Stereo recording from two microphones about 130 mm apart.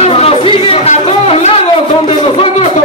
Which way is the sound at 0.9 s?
60° left (ahead or behind).